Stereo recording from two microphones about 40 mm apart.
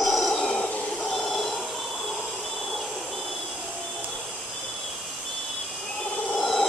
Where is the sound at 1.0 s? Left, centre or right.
Centre.